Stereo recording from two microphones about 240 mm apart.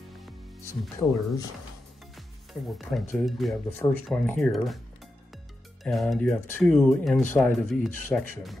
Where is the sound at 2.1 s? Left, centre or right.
Centre.